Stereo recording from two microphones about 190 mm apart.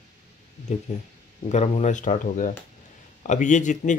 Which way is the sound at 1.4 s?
35° left (ahead or behind).